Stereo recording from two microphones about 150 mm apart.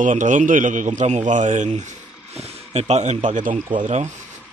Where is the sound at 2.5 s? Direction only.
45° right (ahead or behind).